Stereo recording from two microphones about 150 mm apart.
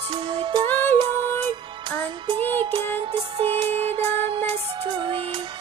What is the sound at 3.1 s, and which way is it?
Music, 40° right (ahead or behind).